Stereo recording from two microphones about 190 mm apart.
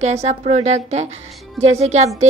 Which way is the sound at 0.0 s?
35° right (ahead or behind).